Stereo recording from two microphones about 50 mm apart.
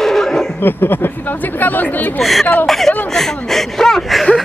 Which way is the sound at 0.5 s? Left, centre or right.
Left.